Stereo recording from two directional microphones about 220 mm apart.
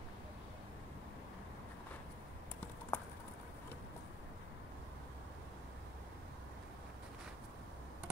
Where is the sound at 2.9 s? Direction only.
10° left (ahead or behind).